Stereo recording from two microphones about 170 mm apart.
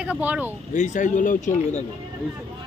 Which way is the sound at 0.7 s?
45° left (ahead or behind).